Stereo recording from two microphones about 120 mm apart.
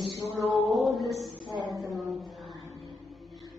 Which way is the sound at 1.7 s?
Centre (ahead or behind).